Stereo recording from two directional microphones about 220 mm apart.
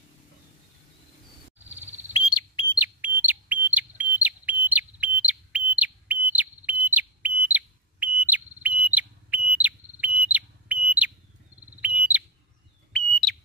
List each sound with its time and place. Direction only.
1.6 s a sound: 10° right (ahead or behind)
2.1 s smoke detector: 20° left (ahead or behind)
2.8 s bird: 10° right (ahead or behind)
4.2 s a sound: 5° right (ahead or behind)
8.6 s whistle: 5° right (ahead or behind)
11.8 s bird: 5° right (ahead or behind)